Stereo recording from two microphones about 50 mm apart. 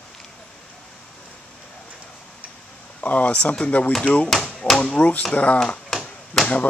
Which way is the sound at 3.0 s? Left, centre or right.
Left.